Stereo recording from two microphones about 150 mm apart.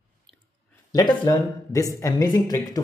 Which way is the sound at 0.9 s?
25° left (ahead or behind).